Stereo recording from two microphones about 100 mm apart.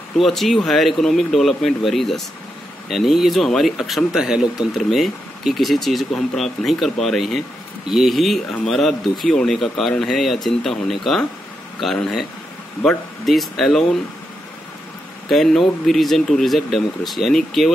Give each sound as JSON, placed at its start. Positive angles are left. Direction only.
{"t": 0.2, "sound": "speech", "side_deg": 0}
{"t": 15.2, "sound": "speech", "side_deg": 5}